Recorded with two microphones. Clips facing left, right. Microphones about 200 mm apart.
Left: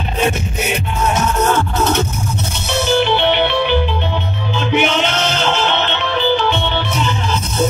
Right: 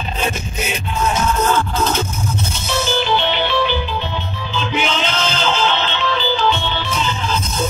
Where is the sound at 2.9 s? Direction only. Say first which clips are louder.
Left 5 dB; 60° left (ahead or behind).